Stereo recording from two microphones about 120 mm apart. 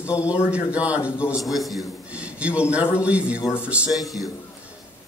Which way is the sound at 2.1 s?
10° right (ahead or behind).